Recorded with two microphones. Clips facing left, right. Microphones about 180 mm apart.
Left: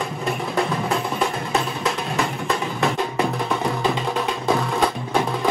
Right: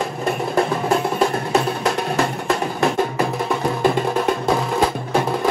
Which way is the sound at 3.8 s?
60° right (ahead or behind).